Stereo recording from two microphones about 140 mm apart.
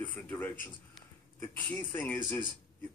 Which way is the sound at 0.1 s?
10° left (ahead or behind).